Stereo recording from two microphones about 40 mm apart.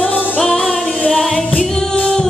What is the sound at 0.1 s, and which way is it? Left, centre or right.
Music, left.